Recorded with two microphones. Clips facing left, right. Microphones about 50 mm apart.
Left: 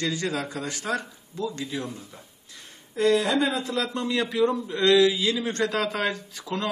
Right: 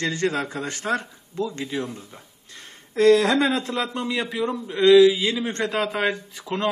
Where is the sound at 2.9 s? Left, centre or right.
Right.